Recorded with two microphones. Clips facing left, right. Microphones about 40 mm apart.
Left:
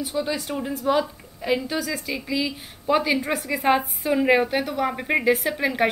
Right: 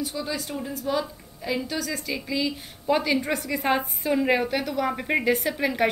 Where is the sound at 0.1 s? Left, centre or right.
Centre.